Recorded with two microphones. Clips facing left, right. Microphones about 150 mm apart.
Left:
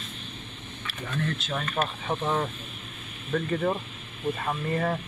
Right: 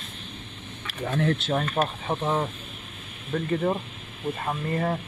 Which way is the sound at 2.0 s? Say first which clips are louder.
Right 1 dB; 15° right (ahead or behind).